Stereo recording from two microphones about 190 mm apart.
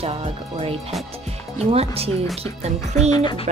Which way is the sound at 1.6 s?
30° right (ahead or behind).